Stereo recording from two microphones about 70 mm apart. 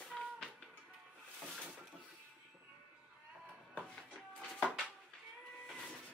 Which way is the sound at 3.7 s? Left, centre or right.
Centre.